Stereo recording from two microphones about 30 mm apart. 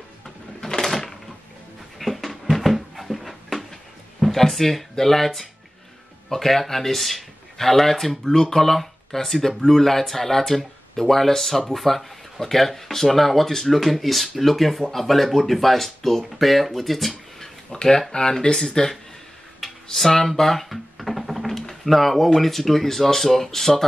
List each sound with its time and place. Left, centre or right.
0.6 s a sound: centre
2.0 s dog: centre
2.6 s a sound: centre
4.2 s speech: centre
17.7 s speech: centre
18.1 s speech: left
18.7 s speech: left
20.0 s speech: centre
20.7 s music: centre
21.8 s speech: centre